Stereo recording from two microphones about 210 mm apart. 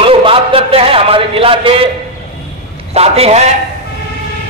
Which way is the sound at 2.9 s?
30° right (ahead or behind).